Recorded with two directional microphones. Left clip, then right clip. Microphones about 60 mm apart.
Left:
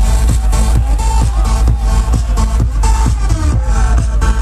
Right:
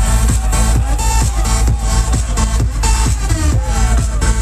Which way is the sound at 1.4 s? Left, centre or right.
Left.